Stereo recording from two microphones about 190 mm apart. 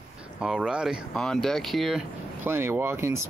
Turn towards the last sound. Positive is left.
turn(degrees=-10)  # may be behind; listen again after turning